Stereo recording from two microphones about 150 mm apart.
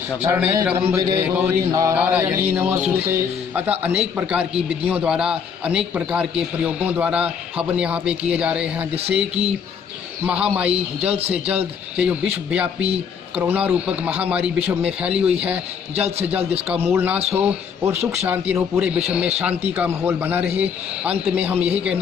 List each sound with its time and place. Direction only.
0.3 s a man's voice: 20° right (ahead or behind)
1.7 s a sound: 20° right (ahead or behind)
2.0 s a man's voice: 10° right (ahead or behind)
10.2 s a man's voice: 10° right (ahead or behind)